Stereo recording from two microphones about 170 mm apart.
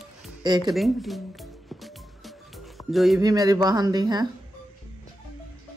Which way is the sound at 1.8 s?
Centre (ahead or behind).